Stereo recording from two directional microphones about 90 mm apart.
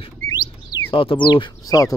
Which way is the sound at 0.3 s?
55° left (ahead or behind).